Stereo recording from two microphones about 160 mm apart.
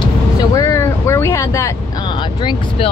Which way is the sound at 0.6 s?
20° left (ahead or behind).